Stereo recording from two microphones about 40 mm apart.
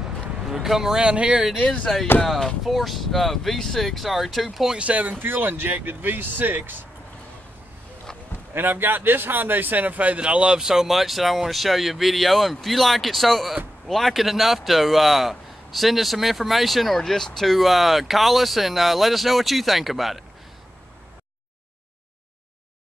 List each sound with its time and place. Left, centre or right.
0.5 s speech: centre
1.1 s speech: right
2.2 s speech: centre
4.7 s speech: right
5.2 s speech: right
8.5 s speech: right
10.1 s speech: right
10.6 s speech: centre